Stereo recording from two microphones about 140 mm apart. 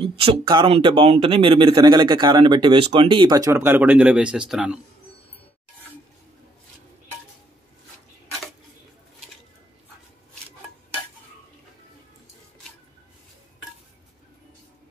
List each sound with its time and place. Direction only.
0.0 s speech: 40° right (ahead or behind); by 4.7 s 5° right (ahead or behind)